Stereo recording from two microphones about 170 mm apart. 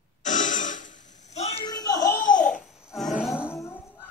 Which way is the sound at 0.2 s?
50° left (ahead or behind).